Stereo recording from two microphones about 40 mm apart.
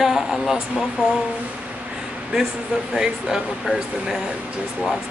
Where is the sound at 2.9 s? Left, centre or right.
Centre.